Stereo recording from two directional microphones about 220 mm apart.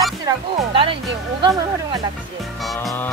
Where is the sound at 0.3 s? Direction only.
15° right (ahead or behind).